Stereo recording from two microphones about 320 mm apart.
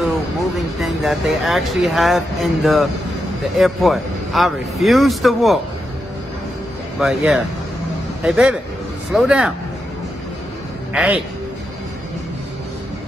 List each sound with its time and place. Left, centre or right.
0.7 s speech: centre
7.0 s speech: centre
10.9 s a man's voice: centre